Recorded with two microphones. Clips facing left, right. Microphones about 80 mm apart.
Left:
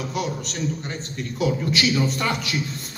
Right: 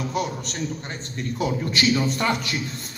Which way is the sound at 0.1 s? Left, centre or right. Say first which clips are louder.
Even; right.